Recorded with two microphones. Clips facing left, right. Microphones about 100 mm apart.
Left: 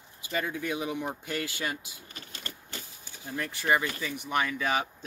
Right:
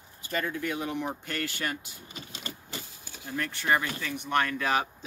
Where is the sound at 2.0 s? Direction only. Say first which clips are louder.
Right 4 dB; 15° right (ahead or behind).